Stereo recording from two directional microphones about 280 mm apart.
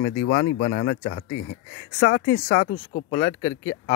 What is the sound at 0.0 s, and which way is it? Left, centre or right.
Speech, left.